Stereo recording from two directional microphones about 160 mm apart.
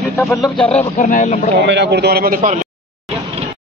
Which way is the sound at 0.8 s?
40° left (ahead or behind).